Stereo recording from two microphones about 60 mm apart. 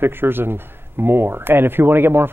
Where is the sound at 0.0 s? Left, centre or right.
Right.